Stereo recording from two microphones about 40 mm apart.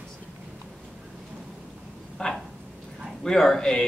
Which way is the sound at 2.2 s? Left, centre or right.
Left.